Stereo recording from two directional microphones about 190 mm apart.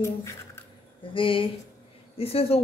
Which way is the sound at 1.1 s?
25° left (ahead or behind).